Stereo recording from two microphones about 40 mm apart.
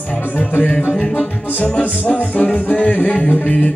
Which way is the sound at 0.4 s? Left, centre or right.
Left.